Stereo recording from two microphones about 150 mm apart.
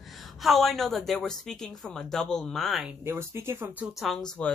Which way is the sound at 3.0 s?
15° right (ahead or behind).